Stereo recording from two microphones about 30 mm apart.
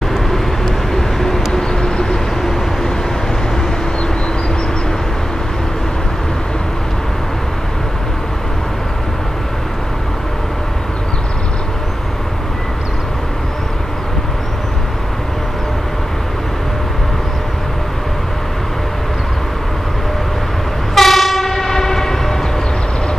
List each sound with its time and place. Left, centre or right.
0.3 s vehicle: centre
20.9 s train: centre